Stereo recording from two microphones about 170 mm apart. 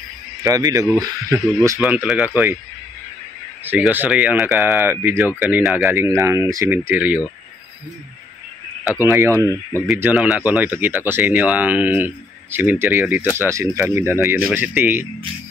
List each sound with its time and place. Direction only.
0.4 s speech: 20° right (ahead or behind)
1.8 s speech: 5° right (ahead or behind)
3.6 s speech: 10° right (ahead or behind)
5.4 s speech: 5° right (ahead or behind)
5.8 s speech: 15° right (ahead or behind)
8.9 s speech: 15° right (ahead or behind)